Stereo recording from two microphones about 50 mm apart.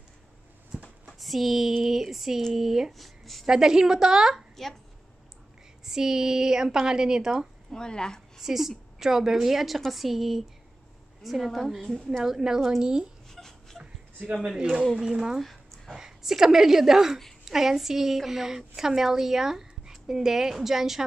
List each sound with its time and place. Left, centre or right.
1.0 s a sound: centre
1.8 s a woman's voice: centre
3.4 s a woman's voice: centre
5.9 s a woman's voice: centre
7.7 s speech: centre
8.4 s a woman's voice: centre
13.3 s a sound: centre
14.6 s a woman's voice: right
15.4 s a sound: centre
15.9 s a woman's voice: centre